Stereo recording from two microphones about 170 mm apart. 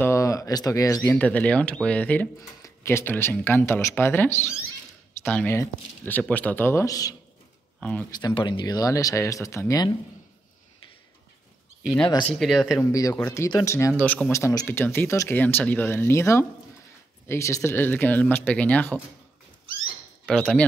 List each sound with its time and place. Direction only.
0.0 s speech: 15° left (ahead or behind)
8.4 s speech: 25° left (ahead or behind)
12.4 s speech: centre (ahead or behind)
12.7 s speech: 20° left (ahead or behind)
20.2 s speech: 5° left (ahead or behind)